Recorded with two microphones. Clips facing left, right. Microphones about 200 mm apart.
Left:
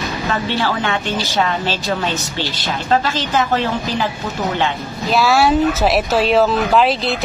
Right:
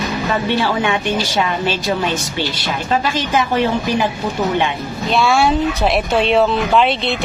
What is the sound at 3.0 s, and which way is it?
A woman's voice, 15° right (ahead or behind).